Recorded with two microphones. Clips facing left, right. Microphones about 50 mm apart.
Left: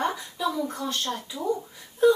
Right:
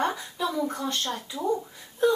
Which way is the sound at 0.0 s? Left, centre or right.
Centre.